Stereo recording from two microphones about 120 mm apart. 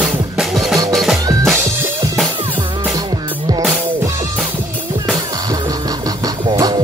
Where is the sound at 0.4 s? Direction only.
Centre (ahead or behind).